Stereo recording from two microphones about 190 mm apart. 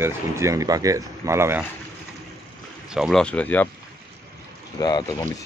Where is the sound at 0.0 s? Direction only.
15° right (ahead or behind).